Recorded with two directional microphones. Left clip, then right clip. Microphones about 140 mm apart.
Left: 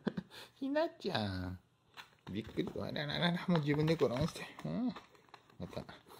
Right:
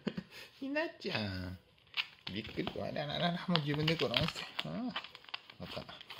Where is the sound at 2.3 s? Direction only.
30° left (ahead or behind).